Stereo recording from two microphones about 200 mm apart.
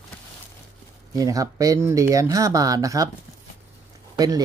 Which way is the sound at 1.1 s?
15° right (ahead or behind).